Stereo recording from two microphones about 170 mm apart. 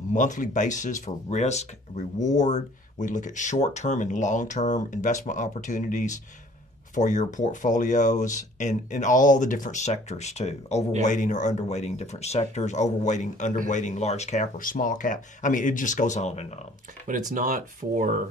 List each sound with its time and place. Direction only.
0.1 s speech: 45° left (ahead or behind)
17.1 s speech: 50° right (ahead or behind)